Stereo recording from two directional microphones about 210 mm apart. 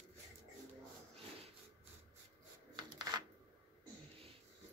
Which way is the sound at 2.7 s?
20° right (ahead or behind).